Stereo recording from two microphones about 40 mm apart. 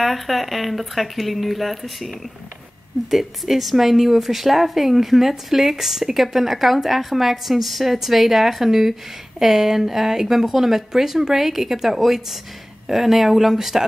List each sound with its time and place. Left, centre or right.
0.0 s a woman's voice: centre